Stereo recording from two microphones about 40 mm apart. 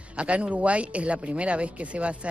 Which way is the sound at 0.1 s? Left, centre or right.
Right.